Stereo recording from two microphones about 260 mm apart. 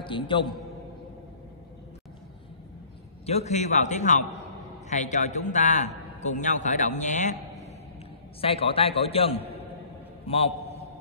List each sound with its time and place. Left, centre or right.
0.0 s a man's voice: centre
3.3 s a man's voice: left